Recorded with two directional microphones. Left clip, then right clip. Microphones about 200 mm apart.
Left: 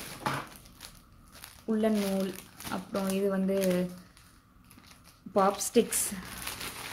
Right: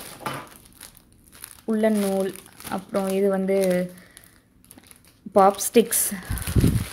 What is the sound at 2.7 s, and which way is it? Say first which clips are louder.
Speech: right 8 dB; 35° right (ahead or behind).